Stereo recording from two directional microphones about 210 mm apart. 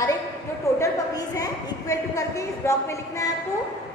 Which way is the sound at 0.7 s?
15° left (ahead or behind).